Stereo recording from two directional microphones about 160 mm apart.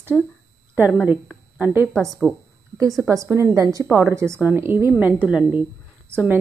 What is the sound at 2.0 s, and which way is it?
Speech, centre (ahead or behind).